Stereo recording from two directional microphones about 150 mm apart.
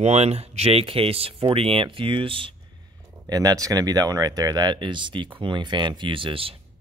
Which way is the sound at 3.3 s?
25° right (ahead or behind).